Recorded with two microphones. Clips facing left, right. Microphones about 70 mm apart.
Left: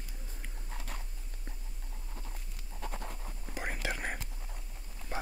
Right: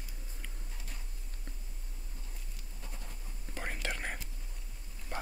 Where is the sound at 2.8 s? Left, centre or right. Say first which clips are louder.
Left 10 dB; left.